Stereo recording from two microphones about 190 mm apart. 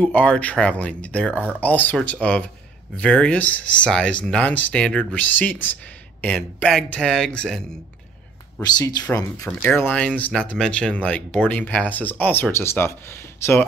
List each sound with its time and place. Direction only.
0.0 s speech: 5° left (ahead or behind)
8.5 s speech: 15° left (ahead or behind)